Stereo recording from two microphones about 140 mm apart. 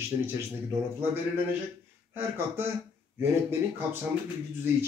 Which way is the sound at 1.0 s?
15° right (ahead or behind).